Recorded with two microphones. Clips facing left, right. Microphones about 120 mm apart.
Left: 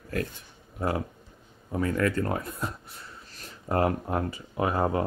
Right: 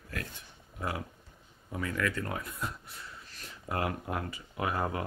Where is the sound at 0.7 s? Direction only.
35° left (ahead or behind).